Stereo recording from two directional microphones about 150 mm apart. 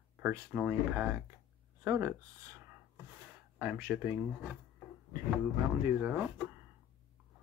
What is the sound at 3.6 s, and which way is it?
Speech, 10° right (ahead or behind).